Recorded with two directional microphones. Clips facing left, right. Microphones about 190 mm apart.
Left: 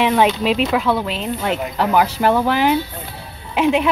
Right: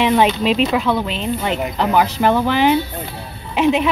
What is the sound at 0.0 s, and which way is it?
Speech, 5° left (ahead or behind).